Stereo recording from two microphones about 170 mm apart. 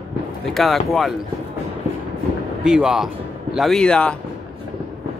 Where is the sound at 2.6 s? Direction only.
5° right (ahead or behind).